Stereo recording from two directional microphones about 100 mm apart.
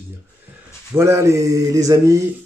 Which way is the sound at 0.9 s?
25° right (ahead or behind).